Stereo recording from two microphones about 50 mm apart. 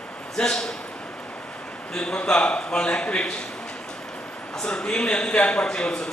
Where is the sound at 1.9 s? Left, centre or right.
Centre.